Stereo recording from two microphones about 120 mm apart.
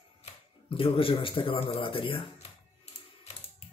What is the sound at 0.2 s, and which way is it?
Speech, 50° left (ahead or behind).